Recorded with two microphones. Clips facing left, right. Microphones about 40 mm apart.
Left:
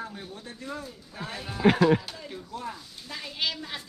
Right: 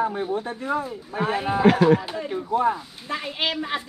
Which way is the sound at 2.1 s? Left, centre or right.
Right.